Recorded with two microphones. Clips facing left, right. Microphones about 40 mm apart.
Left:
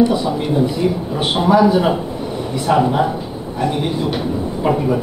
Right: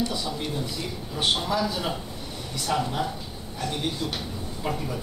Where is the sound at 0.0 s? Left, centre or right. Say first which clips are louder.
Left 13 dB; left.